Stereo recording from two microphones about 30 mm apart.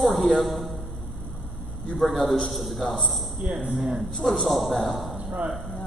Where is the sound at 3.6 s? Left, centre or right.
Right.